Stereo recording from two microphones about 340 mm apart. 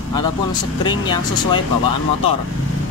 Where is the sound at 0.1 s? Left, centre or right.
Centre.